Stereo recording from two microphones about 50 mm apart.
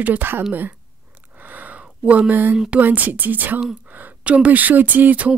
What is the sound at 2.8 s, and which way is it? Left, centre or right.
Speech, right.